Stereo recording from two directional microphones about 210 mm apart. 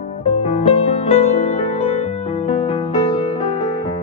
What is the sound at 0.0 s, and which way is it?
Music, 30° left (ahead or behind).